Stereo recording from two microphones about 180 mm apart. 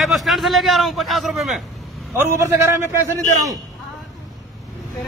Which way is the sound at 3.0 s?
20° right (ahead or behind).